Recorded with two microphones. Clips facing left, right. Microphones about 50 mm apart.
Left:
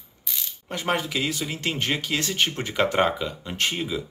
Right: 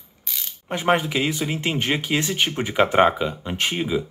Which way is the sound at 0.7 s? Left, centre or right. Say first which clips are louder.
Right 5 dB; right.